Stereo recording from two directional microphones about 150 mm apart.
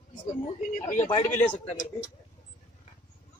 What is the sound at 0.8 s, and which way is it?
Speech, 60° left (ahead or behind).